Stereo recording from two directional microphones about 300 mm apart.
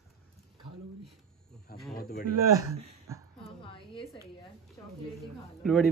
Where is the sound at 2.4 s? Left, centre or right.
Centre.